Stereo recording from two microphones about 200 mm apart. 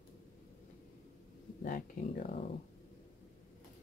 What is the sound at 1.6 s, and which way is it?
Speech, 45° left (ahead or behind).